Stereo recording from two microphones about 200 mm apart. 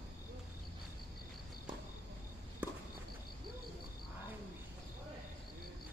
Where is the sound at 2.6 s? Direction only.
10° right (ahead or behind).